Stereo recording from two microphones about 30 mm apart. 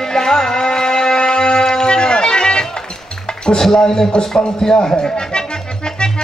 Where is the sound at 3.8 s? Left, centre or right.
Left.